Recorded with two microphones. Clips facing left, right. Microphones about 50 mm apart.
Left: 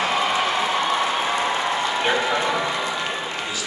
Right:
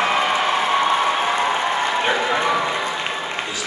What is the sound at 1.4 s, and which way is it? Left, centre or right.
Applause, right.